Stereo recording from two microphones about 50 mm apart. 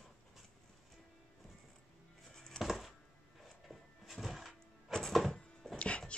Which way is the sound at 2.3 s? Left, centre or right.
Centre.